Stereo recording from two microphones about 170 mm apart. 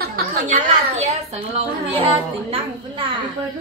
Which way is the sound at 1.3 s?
35° right (ahead or behind).